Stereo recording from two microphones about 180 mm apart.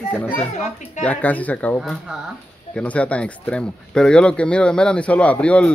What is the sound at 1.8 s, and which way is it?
Speech, centre (ahead or behind).